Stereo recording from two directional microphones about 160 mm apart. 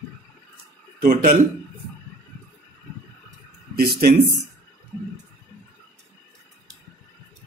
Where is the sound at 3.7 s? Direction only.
70° right (ahead or behind).